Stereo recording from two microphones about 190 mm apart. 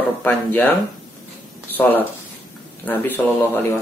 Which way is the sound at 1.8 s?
10° left (ahead or behind).